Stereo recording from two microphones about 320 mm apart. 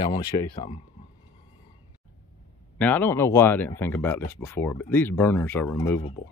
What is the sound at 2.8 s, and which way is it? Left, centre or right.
Speech, centre.